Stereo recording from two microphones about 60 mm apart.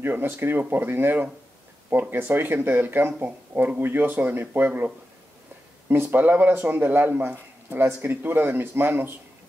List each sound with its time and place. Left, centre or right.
0.0 s a man's voice: right
5.9 s a man's voice: right